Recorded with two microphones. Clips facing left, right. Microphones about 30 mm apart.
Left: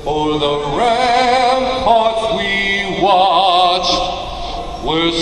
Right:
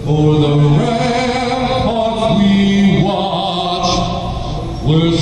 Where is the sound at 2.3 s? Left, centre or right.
Left.